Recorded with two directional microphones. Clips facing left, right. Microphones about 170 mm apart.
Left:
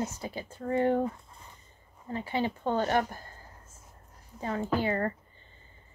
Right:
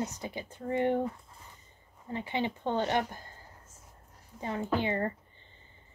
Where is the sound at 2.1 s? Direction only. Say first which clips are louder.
Left 2 dB; 20° right (ahead or behind).